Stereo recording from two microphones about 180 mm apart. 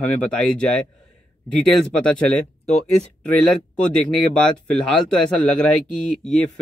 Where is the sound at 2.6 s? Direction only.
40° left (ahead or behind).